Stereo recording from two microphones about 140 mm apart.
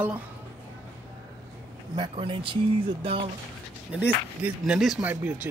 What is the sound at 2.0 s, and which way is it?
Speech, 35° right (ahead or behind).